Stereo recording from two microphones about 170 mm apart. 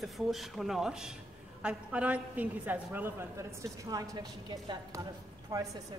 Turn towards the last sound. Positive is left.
turn(degrees=-20)  # may be behind; listen again after turning